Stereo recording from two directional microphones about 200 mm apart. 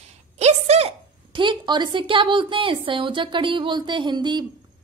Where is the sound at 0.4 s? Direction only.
35° right (ahead or behind).